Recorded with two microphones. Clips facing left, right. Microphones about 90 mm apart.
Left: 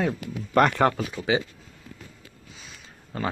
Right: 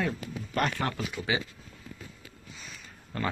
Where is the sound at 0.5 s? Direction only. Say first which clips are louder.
Left 10 dB; 60° left (ahead or behind).